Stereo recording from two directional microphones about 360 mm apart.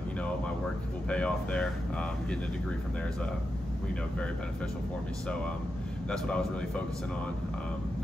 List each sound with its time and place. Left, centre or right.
1.0 s speech: centre
6.0 s speech: centre